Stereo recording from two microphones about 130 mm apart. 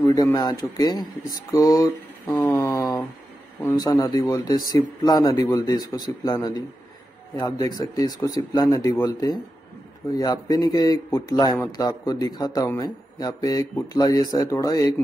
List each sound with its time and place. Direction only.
0.0 s a man's voice: 25° left (ahead or behind)